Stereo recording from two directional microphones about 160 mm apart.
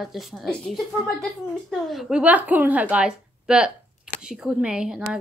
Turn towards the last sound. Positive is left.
turn(degrees=-5)  # may be behind; listen again after turning